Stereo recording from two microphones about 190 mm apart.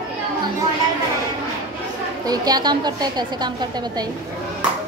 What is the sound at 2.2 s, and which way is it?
A woman's voice, 20° right (ahead or behind).